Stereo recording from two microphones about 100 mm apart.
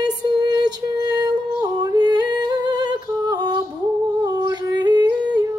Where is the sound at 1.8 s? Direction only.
45° right (ahead or behind).